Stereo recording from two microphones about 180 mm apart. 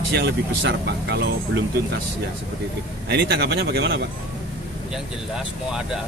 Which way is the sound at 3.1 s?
70° right (ahead or behind).